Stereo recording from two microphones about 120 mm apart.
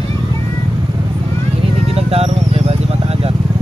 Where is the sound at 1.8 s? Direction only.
55° right (ahead or behind).